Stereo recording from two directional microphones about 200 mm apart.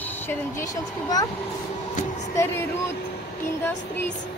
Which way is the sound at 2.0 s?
40° left (ahead or behind).